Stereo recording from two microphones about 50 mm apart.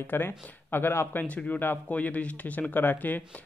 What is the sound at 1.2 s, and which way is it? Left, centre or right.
Speech, left.